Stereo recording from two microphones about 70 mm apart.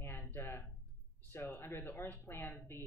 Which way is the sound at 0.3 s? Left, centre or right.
Left.